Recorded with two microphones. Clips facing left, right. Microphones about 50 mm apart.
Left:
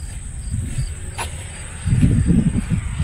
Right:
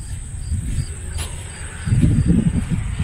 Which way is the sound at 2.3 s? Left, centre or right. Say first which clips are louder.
Left 1 dB; centre.